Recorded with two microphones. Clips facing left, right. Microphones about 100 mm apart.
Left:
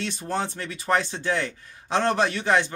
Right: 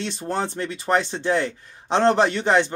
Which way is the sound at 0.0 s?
30° right (ahead or behind).